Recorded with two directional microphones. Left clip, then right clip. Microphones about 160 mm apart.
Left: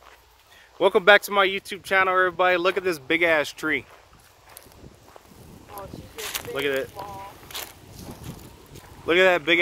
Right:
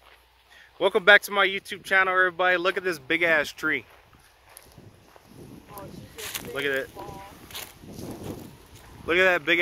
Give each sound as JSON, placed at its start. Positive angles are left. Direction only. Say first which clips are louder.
{"t": 0.7, "sound": "speech", "louder": "left 1 dB", "side_deg": 5}
{"t": 5.8, "sound": "a sound", "louder": "left 4 dB", "side_deg": 0}
{"t": 9.0, "sound": "speech", "louder": "left 2 dB", "side_deg": 10}